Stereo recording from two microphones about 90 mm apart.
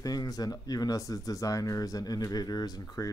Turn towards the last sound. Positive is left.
turn(degrees=45)  # may be behind; listen again after turning